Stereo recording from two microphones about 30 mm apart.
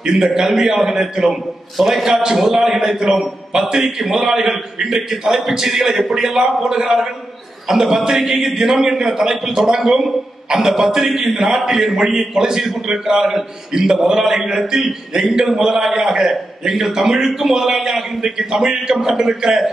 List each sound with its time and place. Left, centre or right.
0.3 s a man's voice: centre